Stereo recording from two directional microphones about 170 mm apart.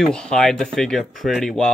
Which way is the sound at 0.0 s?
5° left (ahead or behind).